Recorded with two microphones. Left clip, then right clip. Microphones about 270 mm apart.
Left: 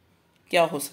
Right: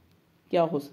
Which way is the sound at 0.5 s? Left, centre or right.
Centre.